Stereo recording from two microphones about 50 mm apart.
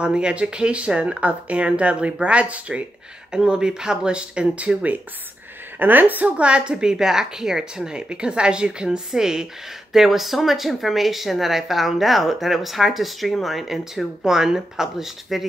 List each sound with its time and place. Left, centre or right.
0.0 s a woman's voice: centre
5.8 s a woman's voice: right; by 15.4 s centre